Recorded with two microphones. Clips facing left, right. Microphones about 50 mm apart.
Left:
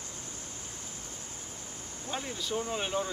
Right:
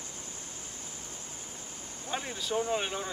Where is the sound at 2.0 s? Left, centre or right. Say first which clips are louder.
Right 1 dB; centre.